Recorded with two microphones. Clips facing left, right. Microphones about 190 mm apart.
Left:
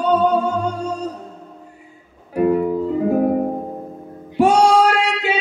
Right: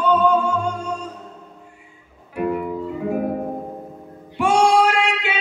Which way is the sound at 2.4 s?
40° left (ahead or behind).